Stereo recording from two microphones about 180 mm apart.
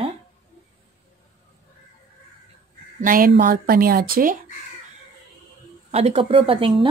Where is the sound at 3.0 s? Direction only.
50° right (ahead or behind).